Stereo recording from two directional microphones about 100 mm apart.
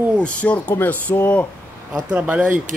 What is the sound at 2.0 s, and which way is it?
Speech, 15° right (ahead or behind).